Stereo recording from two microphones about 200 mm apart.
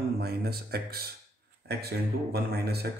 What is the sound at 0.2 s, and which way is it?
Speech, 50° right (ahead or behind).